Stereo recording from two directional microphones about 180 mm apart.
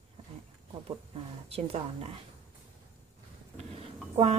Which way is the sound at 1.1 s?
35° right (ahead or behind).